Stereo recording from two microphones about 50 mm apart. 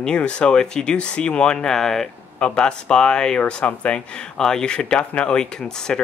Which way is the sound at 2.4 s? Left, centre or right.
Centre.